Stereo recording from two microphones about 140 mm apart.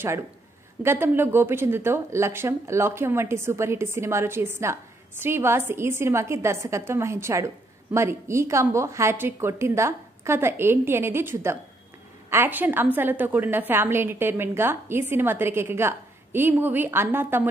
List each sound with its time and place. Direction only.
0.8 s a woman's voice: 15° right (ahead or behind)